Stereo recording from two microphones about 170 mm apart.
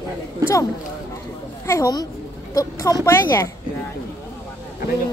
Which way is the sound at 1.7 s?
20° left (ahead or behind).